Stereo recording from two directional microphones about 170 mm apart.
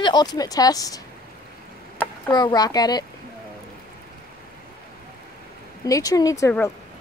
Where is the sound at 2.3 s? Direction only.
25° left (ahead or behind).